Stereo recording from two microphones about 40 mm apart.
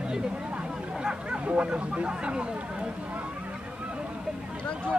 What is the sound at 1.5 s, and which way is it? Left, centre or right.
Speech, right.